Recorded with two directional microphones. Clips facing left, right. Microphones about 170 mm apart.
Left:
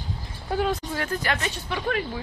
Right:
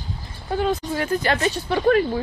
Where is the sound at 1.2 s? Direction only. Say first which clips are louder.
Right 6 dB; 35° right (ahead or behind).